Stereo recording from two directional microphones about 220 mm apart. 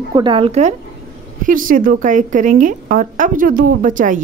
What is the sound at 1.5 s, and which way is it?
A woman's voice, 40° right (ahead or behind).